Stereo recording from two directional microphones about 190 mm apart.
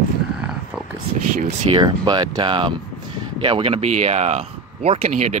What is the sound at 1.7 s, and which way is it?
Speech, 25° right (ahead or behind).